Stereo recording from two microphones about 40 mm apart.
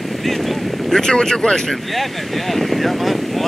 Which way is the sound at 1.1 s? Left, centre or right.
Centre.